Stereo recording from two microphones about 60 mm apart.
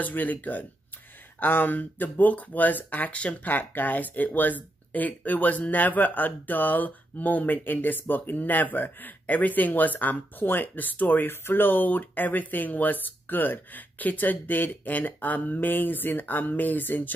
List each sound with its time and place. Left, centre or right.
0.0 s speech: left